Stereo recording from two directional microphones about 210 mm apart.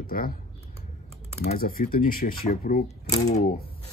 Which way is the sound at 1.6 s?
45° left (ahead or behind).